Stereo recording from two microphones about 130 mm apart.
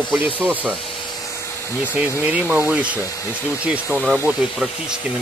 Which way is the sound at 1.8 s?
10° right (ahead or behind).